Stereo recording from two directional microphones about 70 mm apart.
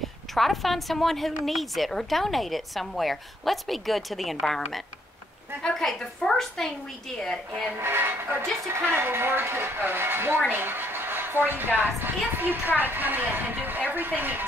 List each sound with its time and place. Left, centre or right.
0.3 s a woman's voice: centre
7.8 s a woman's voice: right